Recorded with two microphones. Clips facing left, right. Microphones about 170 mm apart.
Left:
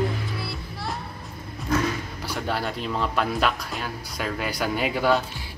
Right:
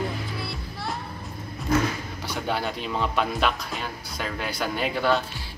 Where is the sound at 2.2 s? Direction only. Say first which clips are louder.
Even; centre (ahead or behind).